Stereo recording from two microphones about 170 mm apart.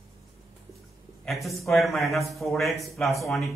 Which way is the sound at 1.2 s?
Centre (ahead or behind).